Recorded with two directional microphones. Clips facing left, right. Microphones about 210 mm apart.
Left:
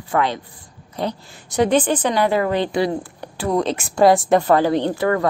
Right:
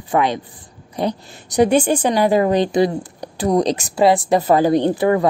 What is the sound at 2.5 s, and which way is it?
Speech, 40° right (ahead or behind).